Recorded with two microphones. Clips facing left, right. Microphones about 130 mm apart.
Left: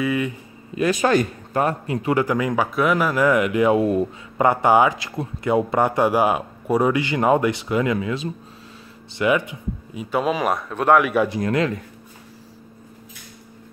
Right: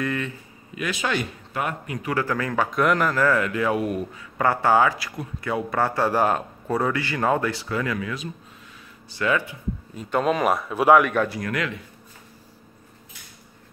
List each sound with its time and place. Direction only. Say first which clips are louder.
0.0 s speech: left 5 dB; 10° left (ahead or behind)
0.7 s a man's voice: left 8 dB; 40° left (ahead or behind); by 10.0 s 15° left (ahead or behind)
10.0 s a man's voice: even; 5° left (ahead or behind)
11.2 s a man's voice: left 6 dB; 25° left (ahead or behind)